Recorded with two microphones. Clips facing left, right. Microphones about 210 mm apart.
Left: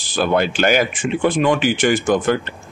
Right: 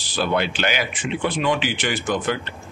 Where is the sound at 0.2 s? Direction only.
45° left (ahead or behind).